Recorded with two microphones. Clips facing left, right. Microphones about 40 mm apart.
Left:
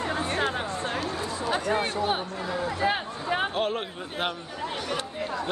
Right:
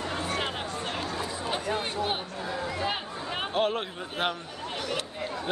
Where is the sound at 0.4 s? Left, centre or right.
Left.